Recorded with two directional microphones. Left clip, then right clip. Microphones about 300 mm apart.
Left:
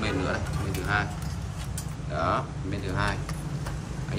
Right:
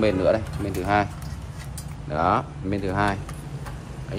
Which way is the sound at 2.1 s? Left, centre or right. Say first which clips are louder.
Right 5 dB; right.